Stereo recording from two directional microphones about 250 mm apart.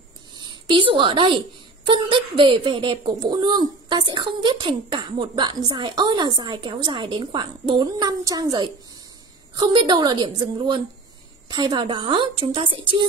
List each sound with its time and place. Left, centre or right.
0.4 s a woman's voice: centre